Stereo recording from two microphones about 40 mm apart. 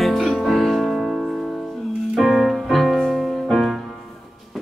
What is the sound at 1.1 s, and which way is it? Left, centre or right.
Music, centre.